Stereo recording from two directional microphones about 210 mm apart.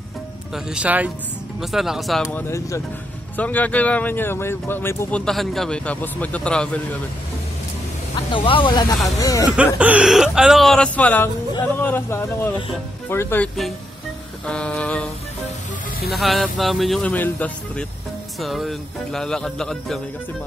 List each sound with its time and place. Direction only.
0.7 s speech: 5° right (ahead or behind)
2.2 s speech: 10° left (ahead or behind)
8.3 s speech: 25° left (ahead or behind)
9.8 s speech: 5° right (ahead or behind)
16.1 s speech: centre (ahead or behind)